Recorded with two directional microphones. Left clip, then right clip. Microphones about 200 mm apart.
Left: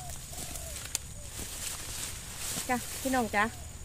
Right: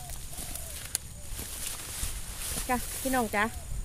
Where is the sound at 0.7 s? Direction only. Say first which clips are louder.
Left 2 dB; 20° right (ahead or behind).